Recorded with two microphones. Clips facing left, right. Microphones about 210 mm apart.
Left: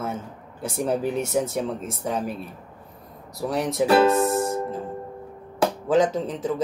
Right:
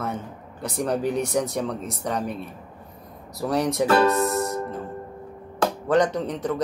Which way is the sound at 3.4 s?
Centre (ahead or behind).